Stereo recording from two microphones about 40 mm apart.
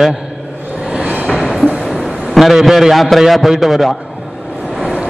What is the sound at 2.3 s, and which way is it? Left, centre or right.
A man's voice, centre.